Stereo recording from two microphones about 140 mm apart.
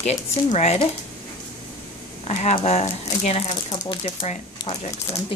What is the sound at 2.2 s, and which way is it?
Speech, 55° left (ahead or behind).